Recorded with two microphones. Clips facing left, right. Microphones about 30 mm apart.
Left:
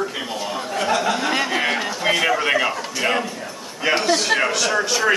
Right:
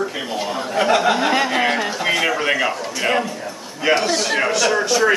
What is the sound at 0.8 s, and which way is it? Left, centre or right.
A man's voice, centre.